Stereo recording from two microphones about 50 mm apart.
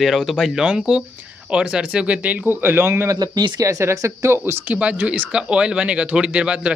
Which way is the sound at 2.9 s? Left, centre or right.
Right.